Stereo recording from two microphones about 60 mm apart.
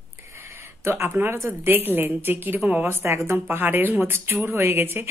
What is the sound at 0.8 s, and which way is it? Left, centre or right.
A woman's voice, right.